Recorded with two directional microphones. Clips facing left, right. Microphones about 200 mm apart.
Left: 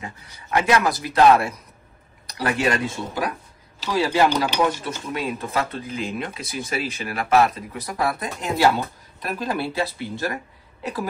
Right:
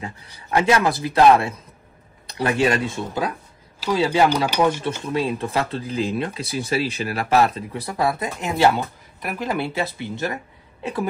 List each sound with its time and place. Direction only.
0.0 s speech: 30° right (ahead or behind)